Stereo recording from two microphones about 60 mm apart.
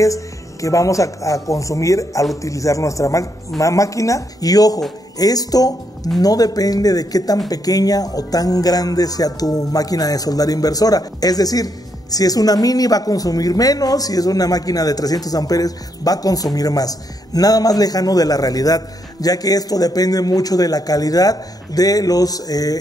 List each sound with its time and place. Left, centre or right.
0.0 s a man's voice: left